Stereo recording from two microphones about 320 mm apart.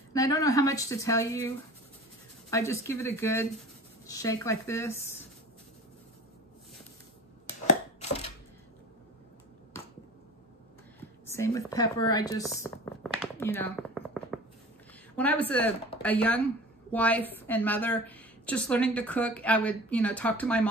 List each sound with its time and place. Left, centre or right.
0.1 s a woman's voice: centre
2.5 s a woman's voice: centre
7.6 s crushing: centre
11.2 s speech: centre
13.9 s a sound: centre
15.1 s a woman's voice: centre